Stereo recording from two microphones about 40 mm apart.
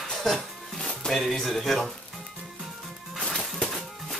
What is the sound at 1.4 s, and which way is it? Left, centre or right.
Speech, centre.